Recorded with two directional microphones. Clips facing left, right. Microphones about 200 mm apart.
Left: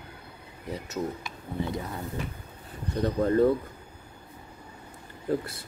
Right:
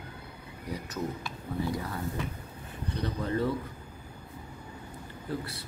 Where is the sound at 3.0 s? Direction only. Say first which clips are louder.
Left 8 dB; 45° left (ahead or behind).